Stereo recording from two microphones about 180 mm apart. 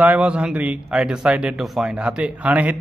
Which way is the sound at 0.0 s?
10° right (ahead or behind).